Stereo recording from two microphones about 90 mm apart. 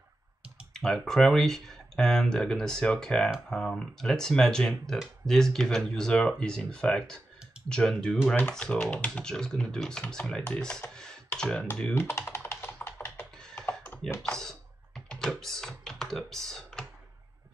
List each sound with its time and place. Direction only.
0.7 s speech: 5° left (ahead or behind)
11.9 s computer keyboard: 30° left (ahead or behind)
13.4 s computer keyboard: 10° left (ahead or behind)
14.2 s speech: 5° left (ahead or behind)